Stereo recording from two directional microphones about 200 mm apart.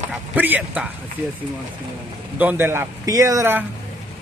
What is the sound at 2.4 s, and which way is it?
Speech, 10° right (ahead or behind).